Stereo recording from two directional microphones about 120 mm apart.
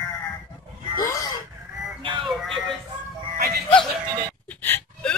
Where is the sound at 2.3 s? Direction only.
Centre (ahead or behind).